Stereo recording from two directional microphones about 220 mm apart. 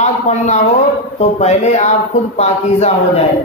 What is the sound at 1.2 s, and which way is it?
Speech, 30° left (ahead or behind).